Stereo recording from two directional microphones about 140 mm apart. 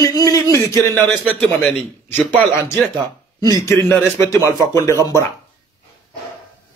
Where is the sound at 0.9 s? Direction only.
10° left (ahead or behind).